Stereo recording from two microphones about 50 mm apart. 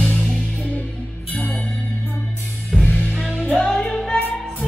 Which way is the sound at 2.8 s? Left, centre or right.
Left.